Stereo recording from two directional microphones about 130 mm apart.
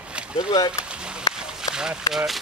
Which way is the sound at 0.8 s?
5° right (ahead or behind).